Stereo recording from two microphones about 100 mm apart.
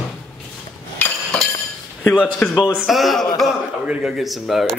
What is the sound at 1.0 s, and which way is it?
Chink, 20° left (ahead or behind).